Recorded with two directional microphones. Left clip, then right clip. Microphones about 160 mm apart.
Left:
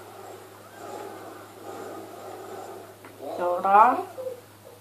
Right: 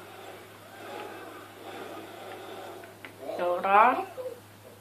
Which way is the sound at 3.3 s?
25° right (ahead or behind).